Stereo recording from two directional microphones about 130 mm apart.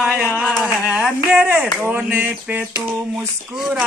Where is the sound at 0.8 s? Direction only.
5° right (ahead or behind).